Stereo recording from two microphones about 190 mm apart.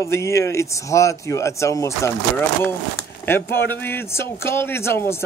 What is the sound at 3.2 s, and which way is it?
A man's voice, 10° left (ahead or behind).